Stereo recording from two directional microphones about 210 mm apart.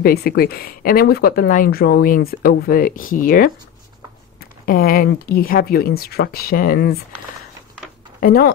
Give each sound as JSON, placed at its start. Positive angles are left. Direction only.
{"t": 0.0, "sound": "speech", "side_deg": 45}
{"t": 8.2, "sound": "speech", "side_deg": 45}